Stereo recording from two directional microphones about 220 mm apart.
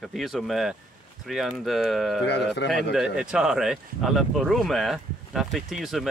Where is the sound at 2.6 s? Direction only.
55° left (ahead or behind).